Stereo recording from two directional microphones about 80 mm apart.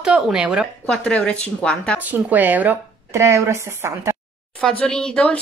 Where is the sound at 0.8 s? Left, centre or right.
Centre.